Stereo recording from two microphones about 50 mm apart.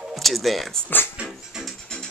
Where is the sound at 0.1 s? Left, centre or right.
Centre.